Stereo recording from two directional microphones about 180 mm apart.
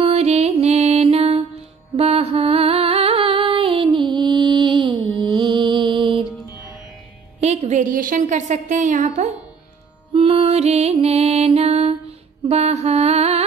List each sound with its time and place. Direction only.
0.0 s music: 35° right (ahead or behind)
7.3 s a woman's voice: 40° right (ahead or behind)
10.1 s music: 35° right (ahead or behind)
12.4 s mantra: 35° right (ahead or behind)